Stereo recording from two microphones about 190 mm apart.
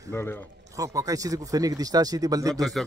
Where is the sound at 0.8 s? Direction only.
15° right (ahead or behind).